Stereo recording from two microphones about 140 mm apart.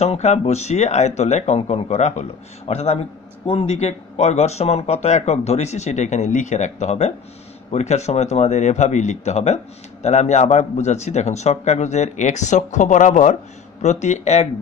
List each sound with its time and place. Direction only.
0.0 s speech: 55° left (ahead or behind)